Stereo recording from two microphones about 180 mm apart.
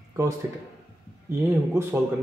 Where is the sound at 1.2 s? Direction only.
15° right (ahead or behind).